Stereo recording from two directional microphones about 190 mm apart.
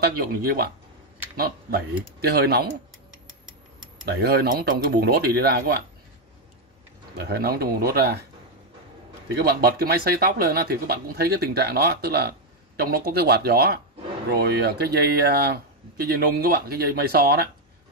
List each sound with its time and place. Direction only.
0.0 s speech: 55° right (ahead or behind)
4.0 s speech: 55° right (ahead or behind)
7.2 s speech: 55° right (ahead or behind)
9.4 s speech: 55° right (ahead or behind)